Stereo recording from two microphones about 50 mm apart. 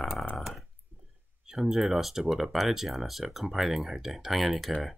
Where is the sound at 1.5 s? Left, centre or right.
Centre.